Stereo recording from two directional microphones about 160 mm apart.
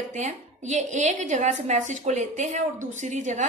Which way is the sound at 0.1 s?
45° right (ahead or behind).